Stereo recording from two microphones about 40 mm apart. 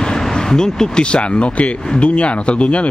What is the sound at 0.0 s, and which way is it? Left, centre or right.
Vehicle, centre.